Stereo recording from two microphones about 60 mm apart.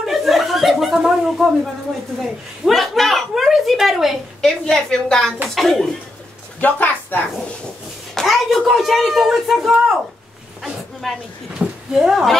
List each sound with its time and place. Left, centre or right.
0.0 s chuckle: centre
2.2 s speech: centre
4.4 s a woman's voice: centre
6.6 s a woman's voice: left
8.1 s speech: centre
11.0 s speech: centre
11.5 s a sound: centre
12.0 s speech: centre